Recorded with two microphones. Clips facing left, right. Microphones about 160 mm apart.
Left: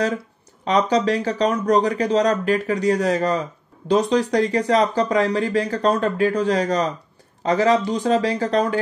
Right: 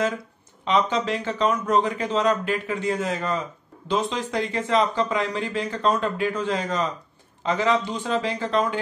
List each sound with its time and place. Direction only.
0.7 s speech: 40° left (ahead or behind)